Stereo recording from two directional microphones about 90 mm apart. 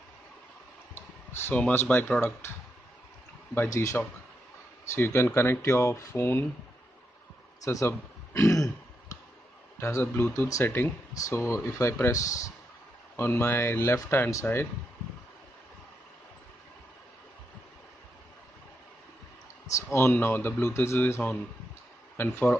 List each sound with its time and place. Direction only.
0.9 s clicking: 25° left (ahead or behind)
1.6 s speech: 20° left (ahead or behind)
3.5 s speech: 35° left (ahead or behind)
7.6 s speech: 35° left (ahead or behind)
8.3 s throat clearing: 35° left (ahead or behind)
9.8 s speech: 30° left (ahead or behind)
13.1 s speech: 25° left (ahead or behind)
19.7 s speech: 30° left (ahead or behind)